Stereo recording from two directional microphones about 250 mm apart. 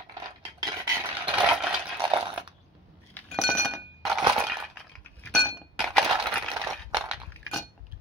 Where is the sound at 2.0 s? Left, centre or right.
Centre.